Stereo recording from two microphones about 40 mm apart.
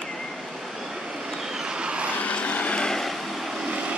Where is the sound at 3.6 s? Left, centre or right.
Right.